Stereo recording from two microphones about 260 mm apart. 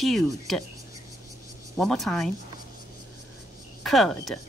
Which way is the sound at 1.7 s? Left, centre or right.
Centre.